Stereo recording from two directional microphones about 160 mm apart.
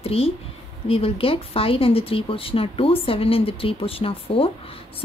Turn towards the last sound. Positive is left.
turn(degrees=35)  # may be behind; listen again after turning